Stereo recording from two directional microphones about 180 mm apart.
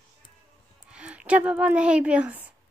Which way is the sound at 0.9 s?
5° right (ahead or behind).